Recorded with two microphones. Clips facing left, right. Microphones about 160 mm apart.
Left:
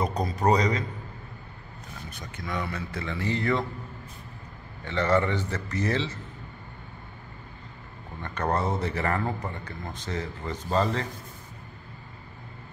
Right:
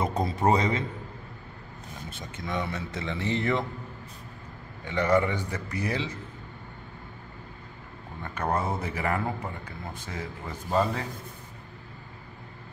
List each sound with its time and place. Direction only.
0.2 s speech: 25° right (ahead or behind)
2.0 s speech: 25° right (ahead or behind)
4.8 s a man's voice: 15° right (ahead or behind)
8.2 s a man's voice: 10° right (ahead or behind)